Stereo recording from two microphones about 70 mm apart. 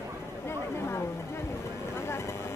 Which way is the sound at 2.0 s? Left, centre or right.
Left.